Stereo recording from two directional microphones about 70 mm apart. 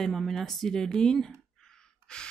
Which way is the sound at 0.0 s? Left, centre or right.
Centre.